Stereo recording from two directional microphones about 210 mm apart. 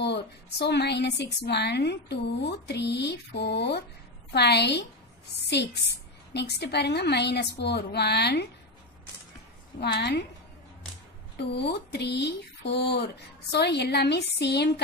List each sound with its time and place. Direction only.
0.0 s a woman's voice: 55° left (ahead or behind)
9.8 s a woman's voice: 50° left (ahead or behind)
11.3 s a woman's voice: 55° left (ahead or behind)